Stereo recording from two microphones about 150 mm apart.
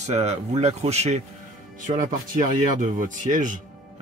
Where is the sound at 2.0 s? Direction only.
60° right (ahead or behind).